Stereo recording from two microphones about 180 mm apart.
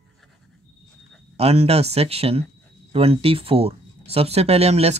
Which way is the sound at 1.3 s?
35° right (ahead or behind).